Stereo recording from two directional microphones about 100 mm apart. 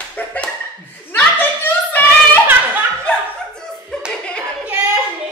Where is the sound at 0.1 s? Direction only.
15° left (ahead or behind).